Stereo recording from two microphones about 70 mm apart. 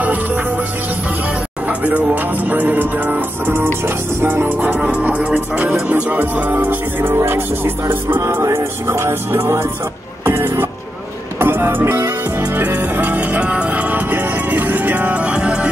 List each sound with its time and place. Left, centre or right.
0.0 s music: right
1.7 s speech: centre
7.2 s music: right; by 15.7 s centre